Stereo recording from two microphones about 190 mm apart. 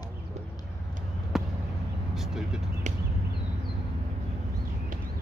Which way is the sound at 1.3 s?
Centre (ahead or behind).